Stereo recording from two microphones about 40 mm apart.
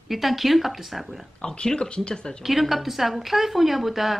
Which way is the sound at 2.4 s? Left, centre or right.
Centre.